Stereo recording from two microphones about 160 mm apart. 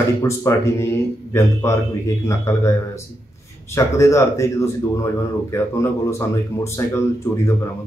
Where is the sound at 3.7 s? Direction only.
15° left (ahead or behind).